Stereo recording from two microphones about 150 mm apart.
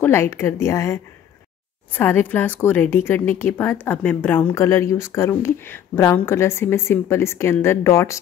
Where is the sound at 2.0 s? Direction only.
15° left (ahead or behind).